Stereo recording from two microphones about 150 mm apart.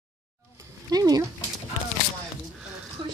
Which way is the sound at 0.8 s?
25° right (ahead or behind).